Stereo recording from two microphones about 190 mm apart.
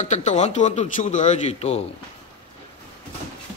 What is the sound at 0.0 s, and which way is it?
Speech, 40° left (ahead or behind).